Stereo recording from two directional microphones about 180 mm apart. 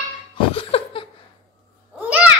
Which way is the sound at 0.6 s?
30° left (ahead or behind).